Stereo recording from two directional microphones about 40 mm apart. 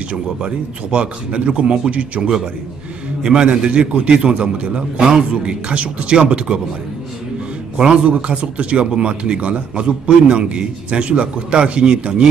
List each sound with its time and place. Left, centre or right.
0.9 s a man's voice: right
3.2 s a man's voice: centre
7.7 s a man's voice: right